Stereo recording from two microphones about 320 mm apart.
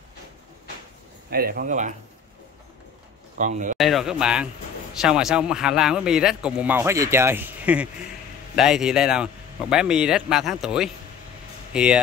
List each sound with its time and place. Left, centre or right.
1.3 s speech: right
3.3 s speech: right
3.7 s a man's voice: centre